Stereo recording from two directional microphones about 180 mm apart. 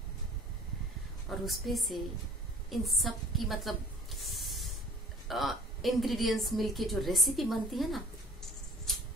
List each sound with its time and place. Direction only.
1.4 s a woman's voice: centre (ahead or behind)
2.7 s a sound: centre (ahead or behind)
5.3 s a woman's voice: centre (ahead or behind)